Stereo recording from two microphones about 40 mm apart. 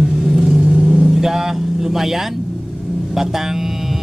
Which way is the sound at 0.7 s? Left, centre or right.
Centre.